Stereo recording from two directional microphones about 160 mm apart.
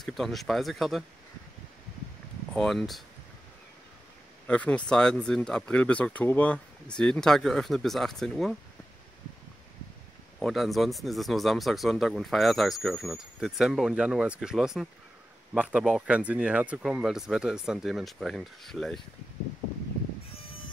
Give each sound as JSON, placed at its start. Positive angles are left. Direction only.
{"t": 0.0, "sound": "speech", "side_deg": 0}
{"t": 2.5, "sound": "speech", "side_deg": 5}
{"t": 4.5, "sound": "speech", "side_deg": 10}
{"t": 10.4, "sound": "speech", "side_deg": 0}